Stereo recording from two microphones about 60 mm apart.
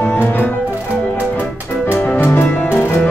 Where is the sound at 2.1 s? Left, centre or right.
Left.